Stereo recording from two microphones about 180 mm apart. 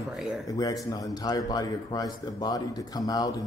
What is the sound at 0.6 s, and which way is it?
A man's voice, 20° left (ahead or behind).